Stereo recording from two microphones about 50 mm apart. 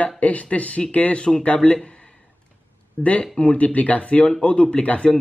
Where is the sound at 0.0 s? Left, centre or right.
Left.